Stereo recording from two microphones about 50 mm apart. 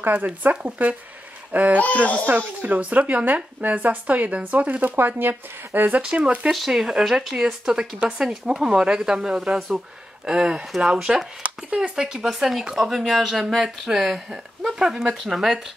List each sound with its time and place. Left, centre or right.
0.1 s speech: right
4.9 s speech: right
5.3 s speech: right
6.0 s speech: centre
6.5 s speech: centre; by 11.9 s right
11.9 s speech: centre